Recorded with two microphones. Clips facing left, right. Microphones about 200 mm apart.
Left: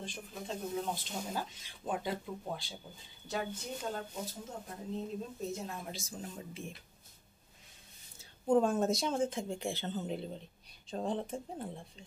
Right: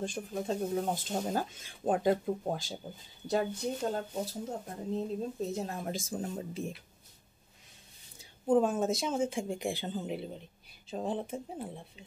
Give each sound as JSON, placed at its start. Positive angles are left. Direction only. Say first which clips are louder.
{"t": 0.0, "sound": "speech", "louder": "right 9 dB", "side_deg": -45}
{"t": 8.5, "sound": "speech", "louder": "right 1 dB", "side_deg": -5}